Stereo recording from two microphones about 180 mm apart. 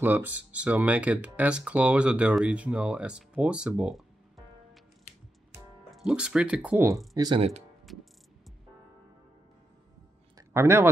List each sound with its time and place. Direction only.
0.0 s speech: 10° right (ahead or behind)
5.9 s speech: centre (ahead or behind)
7.2 s speech: 25° right (ahead or behind)
7.8 s music: centre (ahead or behind)
10.3 s a sound: 15° right (ahead or behind)